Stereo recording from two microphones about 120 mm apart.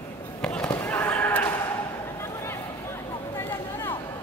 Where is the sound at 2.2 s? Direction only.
20° left (ahead or behind).